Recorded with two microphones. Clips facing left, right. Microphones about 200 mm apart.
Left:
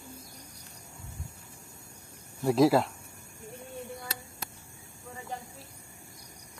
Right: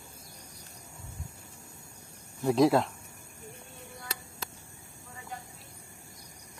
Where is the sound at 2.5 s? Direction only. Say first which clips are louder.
Left 1 dB; centre (ahead or behind).